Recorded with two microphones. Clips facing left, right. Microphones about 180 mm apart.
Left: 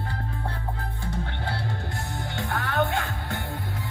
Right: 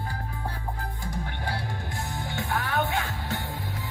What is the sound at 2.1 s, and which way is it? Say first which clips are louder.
Music: right 1 dB; 60° left (ahead or behind).